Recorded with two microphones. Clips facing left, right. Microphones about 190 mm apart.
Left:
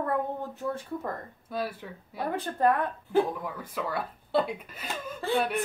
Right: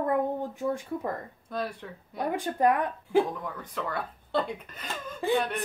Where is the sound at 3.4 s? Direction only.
5° left (ahead or behind).